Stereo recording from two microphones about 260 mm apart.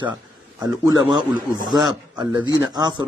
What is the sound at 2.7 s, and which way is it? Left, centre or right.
Speech, centre.